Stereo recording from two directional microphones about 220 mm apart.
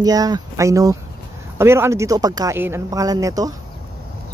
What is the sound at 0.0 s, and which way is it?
Speech, 15° right (ahead or behind).